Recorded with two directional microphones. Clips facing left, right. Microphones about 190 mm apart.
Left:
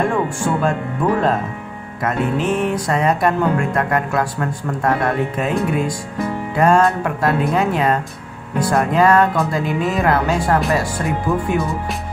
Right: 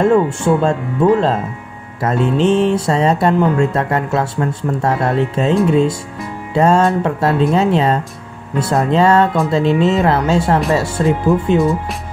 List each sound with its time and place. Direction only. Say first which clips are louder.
0.0 s speech: right 6 dB; 25° right (ahead or behind)
2.0 s speech: right 4 dB; 30° right (ahead or behind)